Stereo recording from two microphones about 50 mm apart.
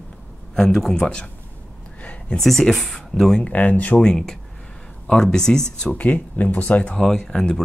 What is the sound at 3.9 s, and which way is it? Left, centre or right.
Speech, centre.